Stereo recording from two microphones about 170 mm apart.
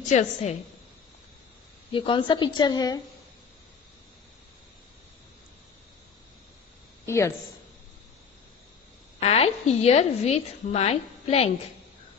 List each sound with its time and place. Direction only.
0.1 s a woman's voice: 45° left (ahead or behind)
1.9 s a woman's voice: 30° left (ahead or behind)
7.1 s a woman's voice: 15° left (ahead or behind)
9.2 s a woman's voice: 35° left (ahead or behind)